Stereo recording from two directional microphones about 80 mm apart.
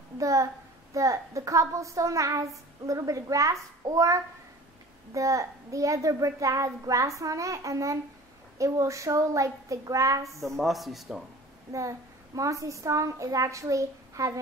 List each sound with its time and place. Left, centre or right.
0.2 s a child's voice: right
10.4 s speech: centre
12.4 s a child's voice: right